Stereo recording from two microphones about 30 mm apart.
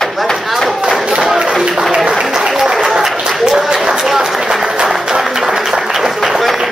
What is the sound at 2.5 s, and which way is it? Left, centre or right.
Applause, centre.